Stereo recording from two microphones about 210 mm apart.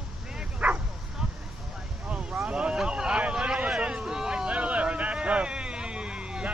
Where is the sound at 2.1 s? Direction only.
5° right (ahead or behind).